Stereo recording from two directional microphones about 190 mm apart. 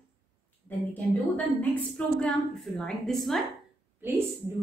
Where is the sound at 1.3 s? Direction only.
5° left (ahead or behind).